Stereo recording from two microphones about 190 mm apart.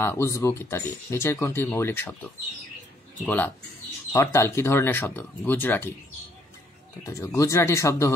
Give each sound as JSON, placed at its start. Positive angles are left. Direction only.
{"t": 0.0, "sound": "speech", "side_deg": 15}
{"t": 3.3, "sound": "speech", "side_deg": 10}
{"t": 7.1, "sound": "speech", "side_deg": 15}